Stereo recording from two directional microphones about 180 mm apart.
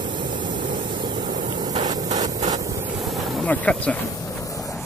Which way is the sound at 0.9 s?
25° right (ahead or behind).